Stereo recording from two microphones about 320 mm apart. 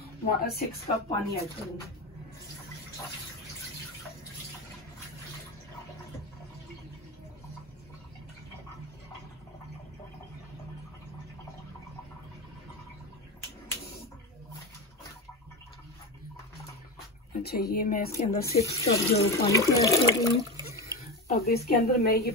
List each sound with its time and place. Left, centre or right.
0.0 s speech: left
17.3 s speech: left; by 20.3 s centre
20.5 s water: centre
21.3 s speech: left